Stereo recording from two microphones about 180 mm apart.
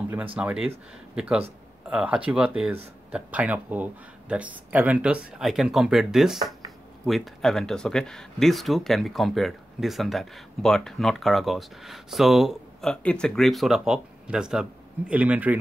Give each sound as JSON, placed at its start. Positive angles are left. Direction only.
{"t": 0.4, "sound": "speech", "side_deg": -5}